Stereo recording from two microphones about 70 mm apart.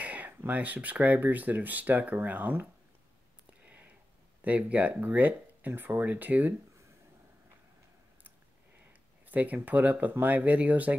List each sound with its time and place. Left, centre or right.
0.0 s speech: right
3.6 s a sound: right
4.4 s speech: centre
9.3 s speech: right